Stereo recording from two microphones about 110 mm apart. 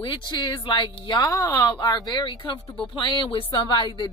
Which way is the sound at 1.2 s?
30° left (ahead or behind).